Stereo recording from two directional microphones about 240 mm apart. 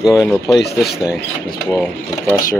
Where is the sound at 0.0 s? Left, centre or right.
Centre.